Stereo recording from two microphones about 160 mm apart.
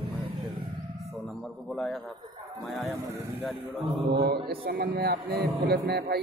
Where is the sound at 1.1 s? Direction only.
Centre (ahead or behind).